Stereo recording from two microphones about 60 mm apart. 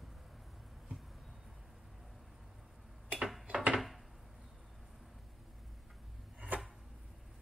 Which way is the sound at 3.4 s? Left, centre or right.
Right.